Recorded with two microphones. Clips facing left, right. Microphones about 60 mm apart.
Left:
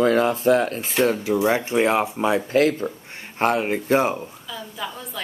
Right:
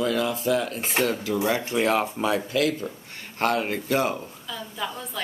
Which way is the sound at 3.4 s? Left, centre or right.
Left.